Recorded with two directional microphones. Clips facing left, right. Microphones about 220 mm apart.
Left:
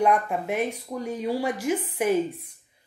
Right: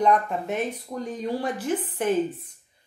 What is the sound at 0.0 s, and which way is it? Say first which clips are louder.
Speech: even; 10° left (ahead or behind).